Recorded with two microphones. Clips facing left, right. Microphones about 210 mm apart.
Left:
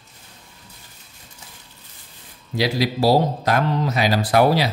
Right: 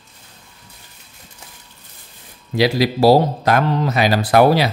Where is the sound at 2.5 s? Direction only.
70° right (ahead or behind).